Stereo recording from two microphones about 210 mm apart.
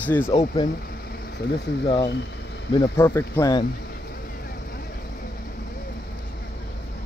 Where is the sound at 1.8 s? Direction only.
20° left (ahead or behind).